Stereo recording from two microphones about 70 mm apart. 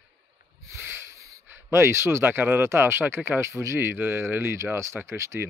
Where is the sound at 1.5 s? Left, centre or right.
Right.